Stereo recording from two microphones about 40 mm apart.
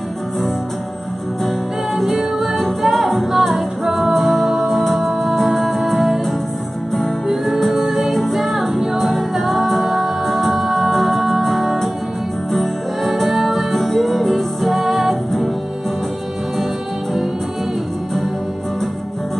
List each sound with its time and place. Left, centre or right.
2.0 s music: centre